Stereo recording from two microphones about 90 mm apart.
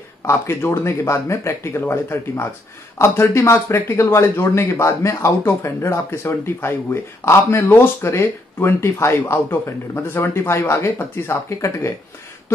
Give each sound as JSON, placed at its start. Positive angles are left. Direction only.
{"t": 0.3, "sound": "speech", "side_deg": 30}